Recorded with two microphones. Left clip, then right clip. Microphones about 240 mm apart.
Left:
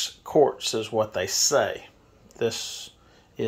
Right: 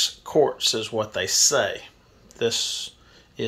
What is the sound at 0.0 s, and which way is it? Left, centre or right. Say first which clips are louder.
Speech: right 1 dB; centre.